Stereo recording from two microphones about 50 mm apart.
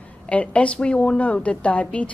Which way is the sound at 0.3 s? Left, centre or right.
Left.